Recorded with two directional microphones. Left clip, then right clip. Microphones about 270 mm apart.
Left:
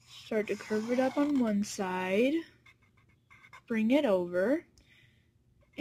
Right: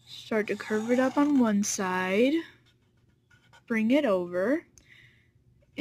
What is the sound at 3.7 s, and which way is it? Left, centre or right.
A woman's voice, centre.